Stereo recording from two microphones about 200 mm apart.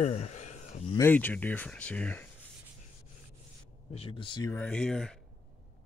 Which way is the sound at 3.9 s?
30° left (ahead or behind).